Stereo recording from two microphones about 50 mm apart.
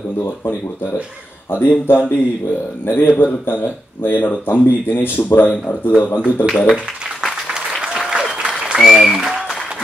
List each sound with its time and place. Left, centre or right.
1.5 s a man's voice: left
6.5 s speech: centre
7.7 s applause: centre
8.7 s speech: centre
9.1 s applause: centre